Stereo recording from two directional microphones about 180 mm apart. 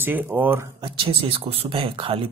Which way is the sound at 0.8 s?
30° right (ahead or behind).